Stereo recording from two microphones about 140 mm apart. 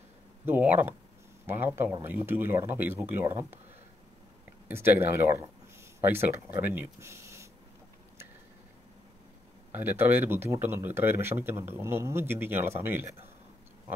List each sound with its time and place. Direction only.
0.5 s speech: 15° right (ahead or behind)
4.6 s speech: 15° right (ahead or behind)
9.7 s speech: 15° right (ahead or behind)